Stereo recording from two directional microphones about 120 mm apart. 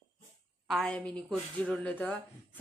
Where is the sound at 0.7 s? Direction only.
5° left (ahead or behind).